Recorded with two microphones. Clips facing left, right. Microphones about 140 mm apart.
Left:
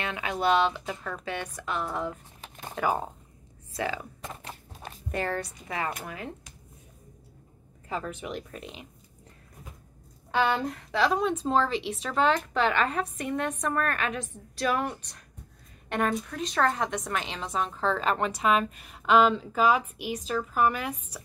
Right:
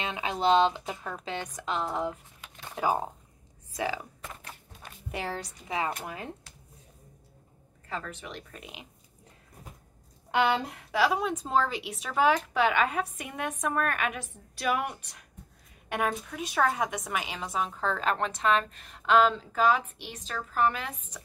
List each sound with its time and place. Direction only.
0.0 s speech: 20° right (ahead or behind)
4.2 s a sound: 30° left (ahead or behind)
5.1 s speech: 10° right (ahead or behind)
7.9 s a woman's voice: 10° left (ahead or behind)
10.3 s a woman's voice: 15° right (ahead or behind); by 20.9 s 5° left (ahead or behind)